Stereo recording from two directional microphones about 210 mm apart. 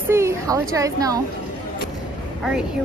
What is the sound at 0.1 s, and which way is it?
A woman's voice, 15° right (ahead or behind).